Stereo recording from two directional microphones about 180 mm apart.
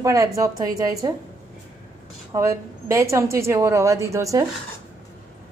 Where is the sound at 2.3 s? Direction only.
15° right (ahead or behind).